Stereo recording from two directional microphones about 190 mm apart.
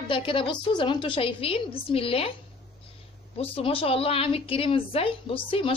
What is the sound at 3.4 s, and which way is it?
A woman's voice, 30° left (ahead or behind).